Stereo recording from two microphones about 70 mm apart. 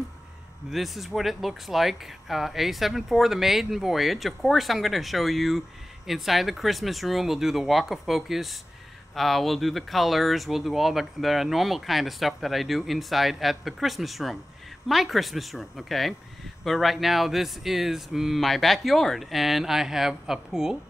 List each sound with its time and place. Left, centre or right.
0.7 s speech: centre